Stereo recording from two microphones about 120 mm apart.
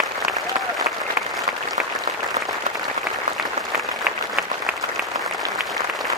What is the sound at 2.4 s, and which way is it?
Applause, 90° right.